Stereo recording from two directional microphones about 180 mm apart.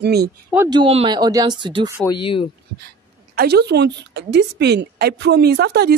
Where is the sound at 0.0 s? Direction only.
65° right (ahead or behind).